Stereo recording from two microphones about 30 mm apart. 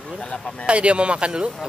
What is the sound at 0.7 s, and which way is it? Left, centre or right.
Speech, right.